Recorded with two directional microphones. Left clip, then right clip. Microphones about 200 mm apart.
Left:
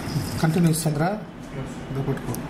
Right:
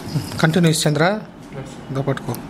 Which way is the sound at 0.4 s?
25° right (ahead or behind).